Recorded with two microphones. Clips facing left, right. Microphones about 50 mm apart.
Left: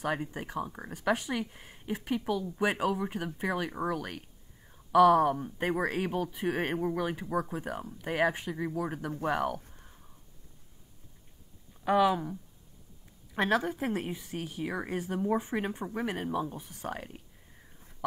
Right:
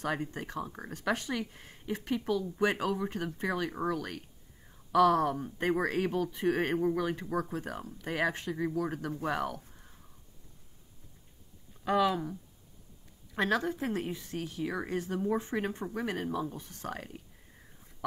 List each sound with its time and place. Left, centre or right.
0.0 s speech: centre
9.1 s speech: left
11.8 s speech: centre
13.4 s speech: centre